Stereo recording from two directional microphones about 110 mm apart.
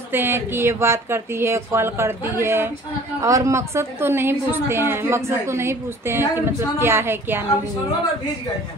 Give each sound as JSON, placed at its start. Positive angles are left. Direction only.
{"t": 0.1, "sound": "a woman's voice", "side_deg": -20}